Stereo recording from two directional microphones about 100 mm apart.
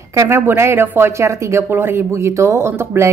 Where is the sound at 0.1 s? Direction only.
30° right (ahead or behind).